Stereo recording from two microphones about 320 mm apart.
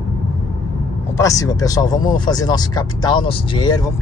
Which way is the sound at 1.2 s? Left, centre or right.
Centre.